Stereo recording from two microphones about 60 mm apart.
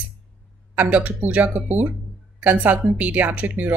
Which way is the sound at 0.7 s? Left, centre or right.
Right.